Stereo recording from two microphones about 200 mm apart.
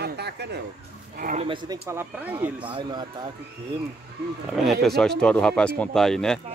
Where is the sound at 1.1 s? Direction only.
40° right (ahead or behind).